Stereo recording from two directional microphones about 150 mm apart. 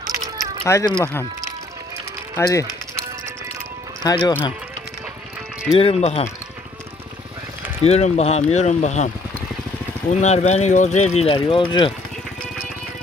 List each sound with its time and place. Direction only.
0.7 s speech: 20° left (ahead or behind)
2.3 s speech: 20° left (ahead or behind)
4.0 s speech: 30° left (ahead or behind)
5.7 s speech: 45° left (ahead or behind)
7.8 s speech: 45° left (ahead or behind)